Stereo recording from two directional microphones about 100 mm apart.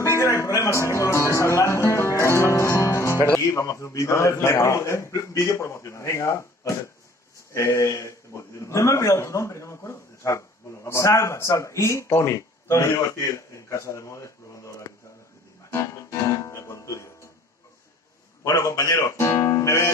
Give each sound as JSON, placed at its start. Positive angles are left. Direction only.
{"t": 0.0, "sound": "music", "side_deg": 30}
{"t": 7.5, "sound": "a man's voice", "side_deg": 30}
{"t": 15.7, "sound": "guitar", "side_deg": 30}
{"t": 18.4, "sound": "speech", "side_deg": 35}